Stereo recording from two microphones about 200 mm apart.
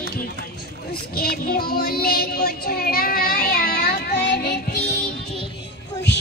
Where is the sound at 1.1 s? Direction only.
50° left (ahead or behind).